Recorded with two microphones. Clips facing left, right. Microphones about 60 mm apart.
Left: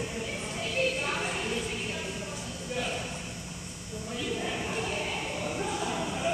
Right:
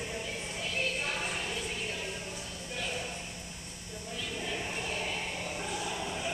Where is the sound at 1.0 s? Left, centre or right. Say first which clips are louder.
Left 3 dB; centre.